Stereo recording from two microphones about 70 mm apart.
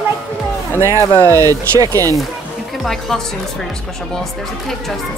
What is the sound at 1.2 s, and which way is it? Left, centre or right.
Speech, right.